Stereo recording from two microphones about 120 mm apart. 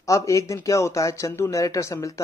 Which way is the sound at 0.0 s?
25° left (ahead or behind).